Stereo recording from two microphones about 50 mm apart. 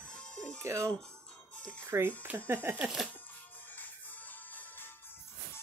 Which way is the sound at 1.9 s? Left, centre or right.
Right.